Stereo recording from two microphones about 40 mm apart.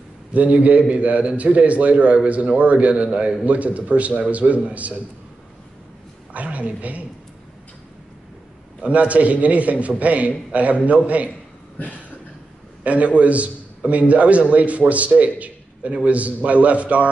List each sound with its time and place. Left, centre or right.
0.3 s a man's voice: right
6.3 s a man's voice: right
8.8 s a man's voice: right
12.8 s a man's voice: right